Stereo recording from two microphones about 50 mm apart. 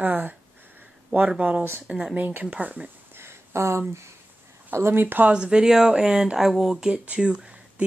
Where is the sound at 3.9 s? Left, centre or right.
Right.